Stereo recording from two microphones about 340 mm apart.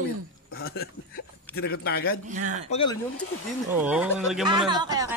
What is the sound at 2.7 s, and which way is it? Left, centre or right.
Speech, centre.